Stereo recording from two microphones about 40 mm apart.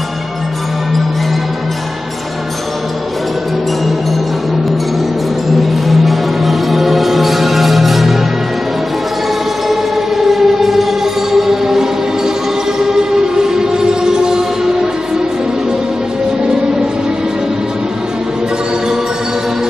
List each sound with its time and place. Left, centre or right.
5.9 s music: centre
9.7 s siren: centre
12.7 s music: centre